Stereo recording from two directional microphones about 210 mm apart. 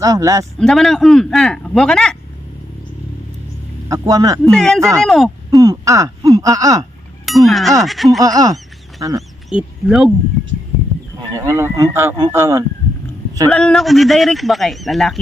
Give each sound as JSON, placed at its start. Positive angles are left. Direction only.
{"t": 0.0, "sound": "speech", "side_deg": -15}
{"t": 0.6, "sound": "speech", "side_deg": 0}
{"t": 3.9, "sound": "speech", "side_deg": -15}
{"t": 4.5, "sound": "speech", "side_deg": 0}
{"t": 4.7, "sound": "speech", "side_deg": -15}
{"t": 5.0, "sound": "speech", "side_deg": 0}
{"t": 5.5, "sound": "speech", "side_deg": -15}
{"t": 7.2, "sound": "speech", "side_deg": 0}
{"t": 8.2, "sound": "speech", "side_deg": -15}
{"t": 9.5, "sound": "speech", "side_deg": -5}
{"t": 11.3, "sound": "speech", "side_deg": -15}
{"t": 13.5, "sound": "speech", "side_deg": 5}